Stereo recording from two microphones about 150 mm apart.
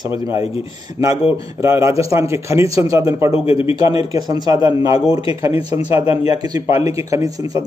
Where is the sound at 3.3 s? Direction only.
35° left (ahead or behind).